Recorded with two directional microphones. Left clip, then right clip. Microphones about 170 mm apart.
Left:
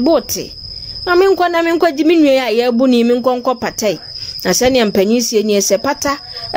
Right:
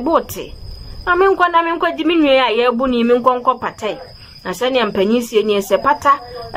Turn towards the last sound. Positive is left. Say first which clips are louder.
# left 1 dB
turn(degrees=25)  # may be behind; listen again after turning